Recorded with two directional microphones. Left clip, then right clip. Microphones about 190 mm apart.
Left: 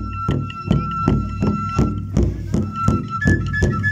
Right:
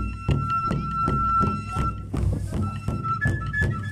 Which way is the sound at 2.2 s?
40° left (ahead or behind).